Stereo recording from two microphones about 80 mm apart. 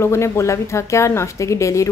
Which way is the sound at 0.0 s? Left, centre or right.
Left.